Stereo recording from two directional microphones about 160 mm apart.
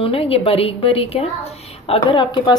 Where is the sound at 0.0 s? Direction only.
35° left (ahead or behind).